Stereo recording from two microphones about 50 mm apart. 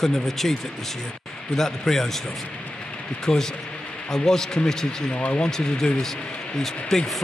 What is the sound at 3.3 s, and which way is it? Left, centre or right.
A man's voice, centre.